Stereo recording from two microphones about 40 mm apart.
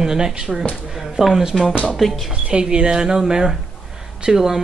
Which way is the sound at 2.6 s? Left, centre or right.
Right.